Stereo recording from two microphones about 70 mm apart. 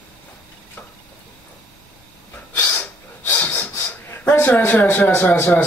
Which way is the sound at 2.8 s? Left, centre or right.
Left.